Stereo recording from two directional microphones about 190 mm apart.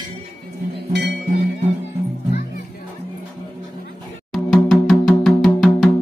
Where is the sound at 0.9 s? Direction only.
60° right (ahead or behind).